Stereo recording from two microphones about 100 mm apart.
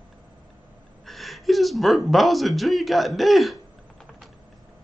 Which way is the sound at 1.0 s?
Centre (ahead or behind).